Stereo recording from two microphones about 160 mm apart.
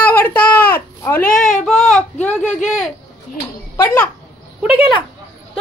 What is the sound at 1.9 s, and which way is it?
Speech, 10° left (ahead or behind).